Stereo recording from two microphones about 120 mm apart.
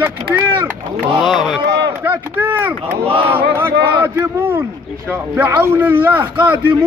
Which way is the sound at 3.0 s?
50° right (ahead or behind).